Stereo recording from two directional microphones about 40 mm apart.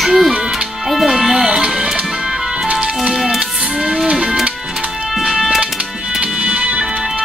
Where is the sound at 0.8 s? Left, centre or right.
Centre.